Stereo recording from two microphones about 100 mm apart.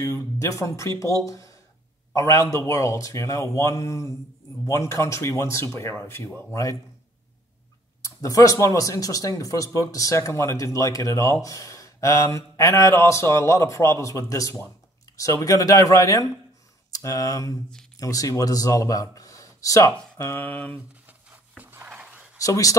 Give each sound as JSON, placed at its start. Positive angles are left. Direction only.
{"t": 0.0, "sound": "speech", "side_deg": 30}
{"t": 8.0, "sound": "speech", "side_deg": 35}
{"t": 21.1, "sound": "a sound", "side_deg": -20}
{"t": 22.4, "sound": "speech", "side_deg": 35}